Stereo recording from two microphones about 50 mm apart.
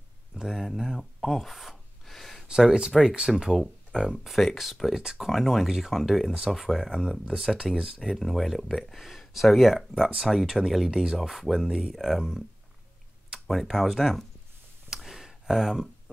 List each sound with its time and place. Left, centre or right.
0.3 s speech: centre
0.7 s gasp: centre
2.4 s speech: centre
8.0 s speech: centre
13.5 s speech: centre
15.0 s a sound: centre